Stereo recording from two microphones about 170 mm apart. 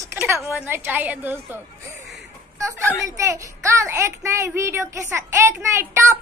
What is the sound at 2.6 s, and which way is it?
A child's voice, 15° right (ahead or behind).